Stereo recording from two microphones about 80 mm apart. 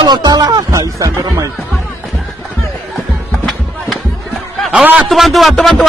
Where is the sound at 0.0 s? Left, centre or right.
Right.